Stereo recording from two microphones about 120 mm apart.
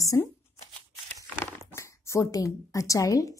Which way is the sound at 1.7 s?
25° left (ahead or behind).